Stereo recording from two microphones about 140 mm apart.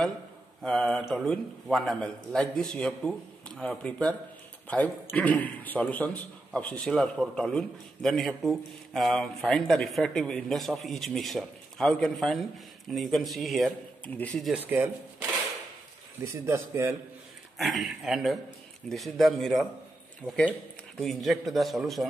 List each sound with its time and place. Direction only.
0.6 s a man's voice: 5° left (ahead or behind)
14.5 s speech: 10° right (ahead or behind)
16.4 s a man's voice: 20° right (ahead or behind)
17.6 s a man's voice: centre (ahead or behind)